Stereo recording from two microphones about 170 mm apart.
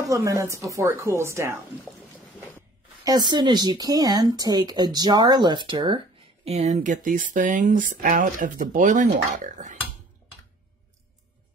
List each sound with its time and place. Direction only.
0.0 s speech: 20° right (ahead or behind)
3.0 s speech: 25° right (ahead or behind); by 9.9 s 45° right (ahead or behind)